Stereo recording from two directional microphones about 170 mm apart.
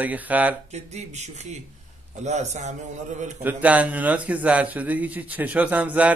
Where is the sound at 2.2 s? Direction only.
45° right (ahead or behind).